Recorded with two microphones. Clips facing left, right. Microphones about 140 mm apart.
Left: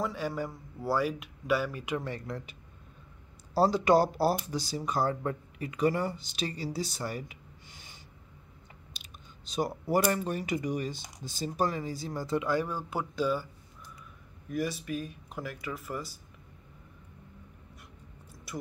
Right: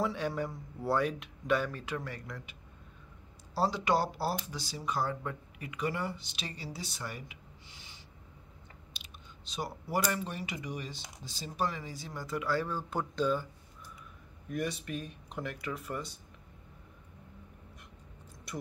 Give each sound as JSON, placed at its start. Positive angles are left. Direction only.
{"t": 0.0, "sound": "speech", "side_deg": 0}
{"t": 2.0, "sound": "speech", "side_deg": 25}
{"t": 3.5, "sound": "speech", "side_deg": 45}
{"t": 12.4, "sound": "speech", "side_deg": 15}
{"t": 14.5, "sound": "speech", "side_deg": 0}
{"t": 18.5, "sound": "a sound", "side_deg": 5}